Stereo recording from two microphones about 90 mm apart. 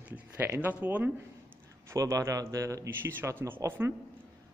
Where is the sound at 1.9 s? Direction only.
35° right (ahead or behind).